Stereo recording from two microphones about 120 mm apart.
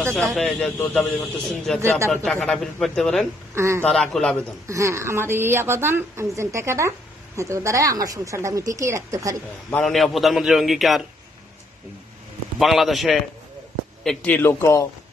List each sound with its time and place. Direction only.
0.1 s a man's voice: 5° left (ahead or behind)
0.7 s a man's voice: 15° left (ahead or behind)
3.5 s a woman's voice: 25° right (ahead or behind)
3.8 s a man's voice: 5° left (ahead or behind)
4.6 s a woman's voice: 25° right (ahead or behind)
9.7 s a man's voice: 5° left (ahead or behind)
12.5 s a man's voice: centre (ahead or behind)
14.0 s a man's voice: 10° left (ahead or behind)